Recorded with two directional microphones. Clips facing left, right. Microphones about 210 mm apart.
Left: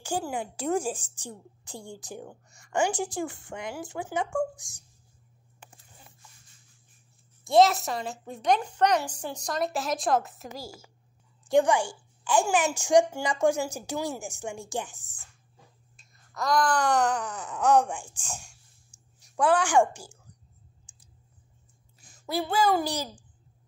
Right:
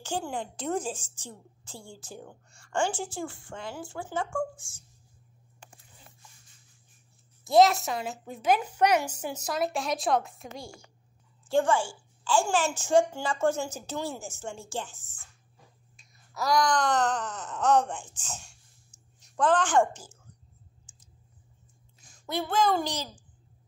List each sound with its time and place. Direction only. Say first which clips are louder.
0.0 s a woman's voice: left 2 dB; 10° left (ahead or behind)
7.4 s a woman's voice: even; centre (ahead or behind)
11.4 s a woman's voice: left 2 dB; 15° left (ahead or behind)
16.0 s a woman's voice: even; centre (ahead or behind)
22.2 s a woman's voice: left 1 dB; 5° left (ahead or behind)